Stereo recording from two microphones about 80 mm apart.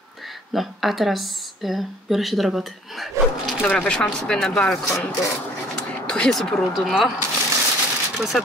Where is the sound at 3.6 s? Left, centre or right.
Centre.